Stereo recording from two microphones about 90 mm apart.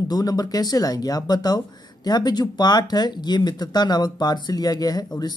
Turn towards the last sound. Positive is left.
turn(degrees=50)  # may be behind; listen again after turning